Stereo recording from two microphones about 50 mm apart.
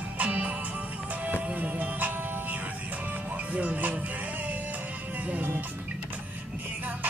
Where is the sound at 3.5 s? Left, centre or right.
Right.